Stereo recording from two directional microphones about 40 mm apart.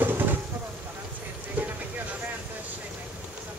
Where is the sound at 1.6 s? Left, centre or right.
Right.